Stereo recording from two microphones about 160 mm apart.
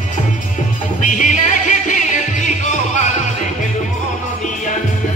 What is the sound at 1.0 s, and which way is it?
Music, 50° left (ahead or behind).